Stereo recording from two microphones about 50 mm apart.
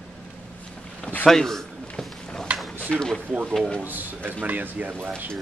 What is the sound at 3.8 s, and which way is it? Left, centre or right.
Speech, right.